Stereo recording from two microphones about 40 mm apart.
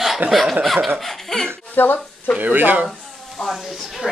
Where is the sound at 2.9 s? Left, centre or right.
Centre.